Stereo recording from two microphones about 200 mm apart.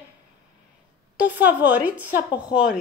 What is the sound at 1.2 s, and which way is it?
Speech, 10° right (ahead or behind).